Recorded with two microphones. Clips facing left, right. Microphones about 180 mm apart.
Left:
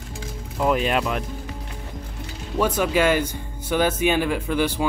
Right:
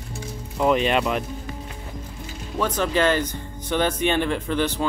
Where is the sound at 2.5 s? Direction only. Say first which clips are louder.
Left 2 dB; 10° left (ahead or behind).